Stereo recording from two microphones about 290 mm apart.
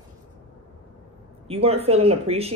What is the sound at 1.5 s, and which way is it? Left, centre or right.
Speech, right.